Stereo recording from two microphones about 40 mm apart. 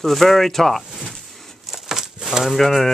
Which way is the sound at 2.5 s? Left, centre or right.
Centre.